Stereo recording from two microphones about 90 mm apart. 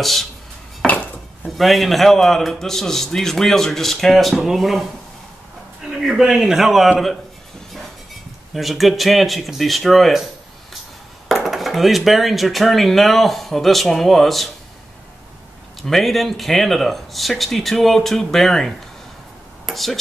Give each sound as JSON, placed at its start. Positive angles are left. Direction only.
{"t": 0.0, "sound": "speech", "side_deg": 0}
{"t": 0.8, "sound": "dishes", "side_deg": 15}
{"t": 1.6, "sound": "speech", "side_deg": 0}
{"t": 5.9, "sound": "speech", "side_deg": 0}
{"t": 8.5, "sound": "speech", "side_deg": 0}
{"t": 11.2, "sound": "speech", "side_deg": 0}
{"t": 15.8, "sound": "speech", "side_deg": 0}